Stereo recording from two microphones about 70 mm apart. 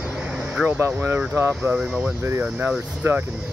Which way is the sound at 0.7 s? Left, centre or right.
Right.